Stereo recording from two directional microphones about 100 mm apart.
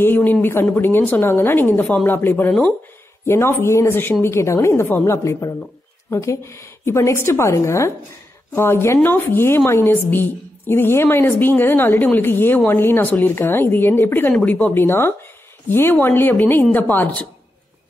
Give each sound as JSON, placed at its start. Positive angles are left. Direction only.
{"t": 0.0, "sound": "a woman's voice", "side_deg": 20}